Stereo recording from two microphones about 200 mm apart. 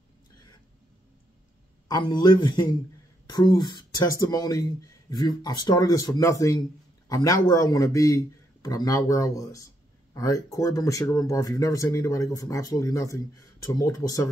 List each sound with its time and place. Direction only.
1.9 s speech: 20° left (ahead or behind)